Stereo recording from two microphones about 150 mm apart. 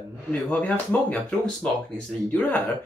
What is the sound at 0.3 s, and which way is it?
Speech, 10° left (ahead or behind).